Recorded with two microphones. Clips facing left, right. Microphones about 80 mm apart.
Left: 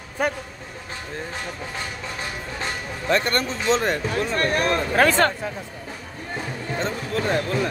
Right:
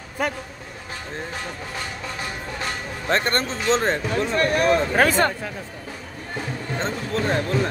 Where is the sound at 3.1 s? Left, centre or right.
Right.